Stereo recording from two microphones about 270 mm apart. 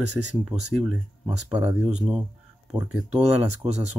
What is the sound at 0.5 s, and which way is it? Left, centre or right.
Speech, centre.